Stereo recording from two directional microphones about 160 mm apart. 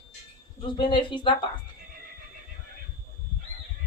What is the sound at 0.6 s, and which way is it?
Speech, 30° left (ahead or behind).